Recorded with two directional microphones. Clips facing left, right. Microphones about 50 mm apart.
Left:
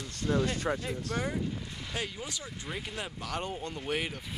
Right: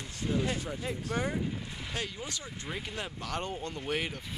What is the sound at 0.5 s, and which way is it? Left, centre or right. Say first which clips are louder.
Speech: left 5 dB; left.